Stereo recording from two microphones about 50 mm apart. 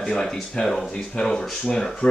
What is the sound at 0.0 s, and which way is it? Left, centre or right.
Speech, centre.